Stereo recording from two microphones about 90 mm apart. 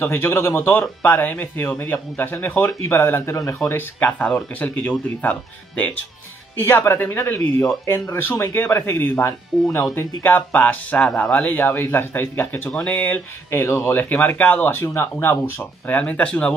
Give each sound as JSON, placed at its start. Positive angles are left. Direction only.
{"t": 0.0, "sound": "speech", "side_deg": 25}
{"t": 4.0, "sound": "speech", "side_deg": 15}
{"t": 9.9, "sound": "speech", "side_deg": 20}
{"t": 12.7, "sound": "speech", "side_deg": 15}
{"t": 13.5, "sound": "speech", "side_deg": 30}
{"t": 15.9, "sound": "speech", "side_deg": 15}